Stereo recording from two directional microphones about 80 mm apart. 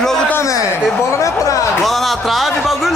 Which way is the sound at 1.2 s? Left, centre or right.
Left.